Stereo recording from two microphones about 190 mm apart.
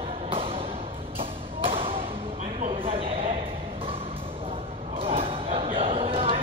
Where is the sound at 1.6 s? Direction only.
30° right (ahead or behind).